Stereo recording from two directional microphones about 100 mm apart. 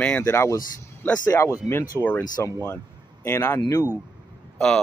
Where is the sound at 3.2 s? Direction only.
25° left (ahead or behind).